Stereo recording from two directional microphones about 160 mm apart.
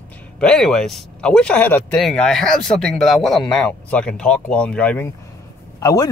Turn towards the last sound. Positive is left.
turn(degrees=20)  # may be behind; listen again after turning